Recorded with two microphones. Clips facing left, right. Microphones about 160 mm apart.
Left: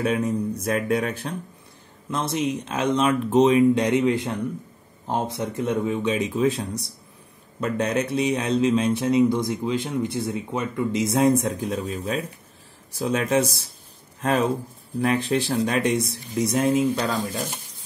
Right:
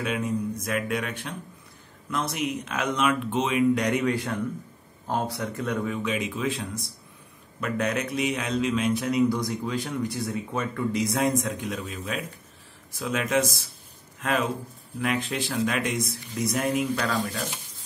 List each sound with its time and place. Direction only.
0.0 s speech: 35° left (ahead or behind)
2.0 s speech: 25° left (ahead or behind)